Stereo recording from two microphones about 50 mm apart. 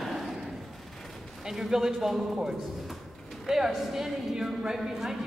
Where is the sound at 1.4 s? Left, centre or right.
Centre.